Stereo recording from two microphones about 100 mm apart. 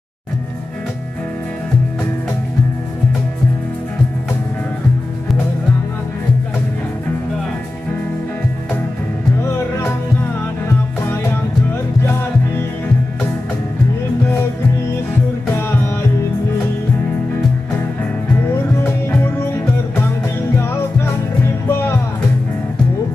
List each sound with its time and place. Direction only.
9.4 s music: 25° left (ahead or behind)
12.0 s music: 25° left (ahead or behind)
18.3 s music: 25° left (ahead or behind)
20.5 s music: 25° left (ahead or behind)